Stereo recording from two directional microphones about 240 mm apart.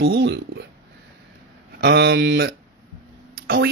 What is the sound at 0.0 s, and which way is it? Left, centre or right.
Speech, right.